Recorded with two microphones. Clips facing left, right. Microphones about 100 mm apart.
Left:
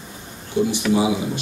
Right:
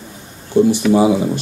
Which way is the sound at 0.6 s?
40° right (ahead or behind).